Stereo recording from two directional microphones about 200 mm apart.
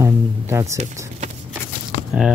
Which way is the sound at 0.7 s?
35° right (ahead or behind).